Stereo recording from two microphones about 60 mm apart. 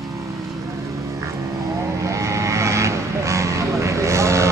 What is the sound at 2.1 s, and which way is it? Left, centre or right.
Vehicle, right.